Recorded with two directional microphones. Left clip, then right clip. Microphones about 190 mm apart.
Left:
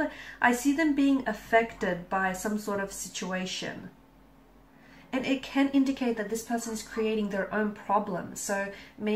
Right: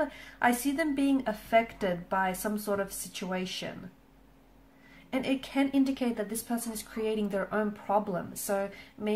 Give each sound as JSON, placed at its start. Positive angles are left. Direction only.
{"t": 0.4, "sound": "speech", "side_deg": -45}
{"t": 5.1, "sound": "speech", "side_deg": -45}